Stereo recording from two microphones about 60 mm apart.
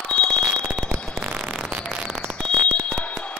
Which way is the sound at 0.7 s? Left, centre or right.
Centre.